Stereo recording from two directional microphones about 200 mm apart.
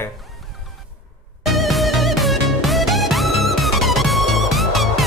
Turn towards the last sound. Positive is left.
turn(degrees=0)  # may be behind; listen again after turning